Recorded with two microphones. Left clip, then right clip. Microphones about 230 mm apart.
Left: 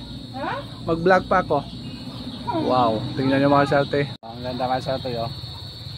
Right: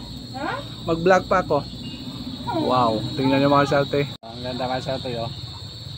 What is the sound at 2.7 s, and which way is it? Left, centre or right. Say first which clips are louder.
Speech: even; centre.